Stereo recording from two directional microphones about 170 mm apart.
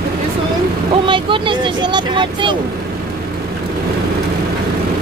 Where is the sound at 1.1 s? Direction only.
30° right (ahead or behind).